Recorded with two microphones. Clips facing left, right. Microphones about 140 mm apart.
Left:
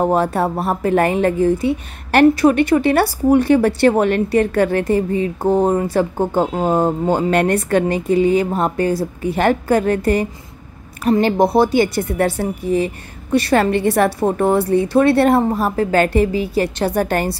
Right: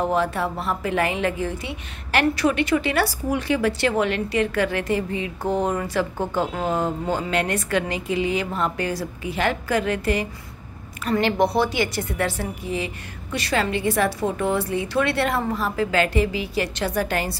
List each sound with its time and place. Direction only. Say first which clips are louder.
0.0 s a woman's voice: left 6 dB; 50° left (ahead or behind)